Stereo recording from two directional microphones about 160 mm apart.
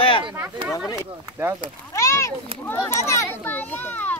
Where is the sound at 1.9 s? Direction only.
20° left (ahead or behind).